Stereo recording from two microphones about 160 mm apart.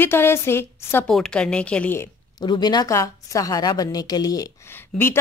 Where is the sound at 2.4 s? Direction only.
25° left (ahead or behind).